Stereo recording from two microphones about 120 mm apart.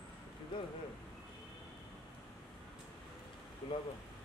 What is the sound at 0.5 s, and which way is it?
Speech, 45° left (ahead or behind).